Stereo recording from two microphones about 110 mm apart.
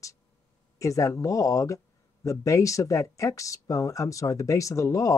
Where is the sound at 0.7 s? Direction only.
30° left (ahead or behind).